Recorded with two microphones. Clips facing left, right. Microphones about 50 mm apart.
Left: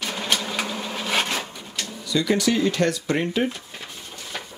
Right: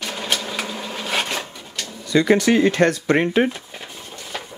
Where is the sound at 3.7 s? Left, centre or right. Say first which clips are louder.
Right 2 dB; centre.